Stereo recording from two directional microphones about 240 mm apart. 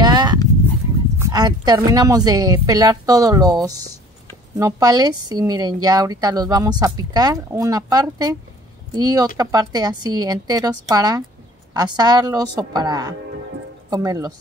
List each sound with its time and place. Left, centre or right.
0.0 s dog: centre
1.2 s speech: centre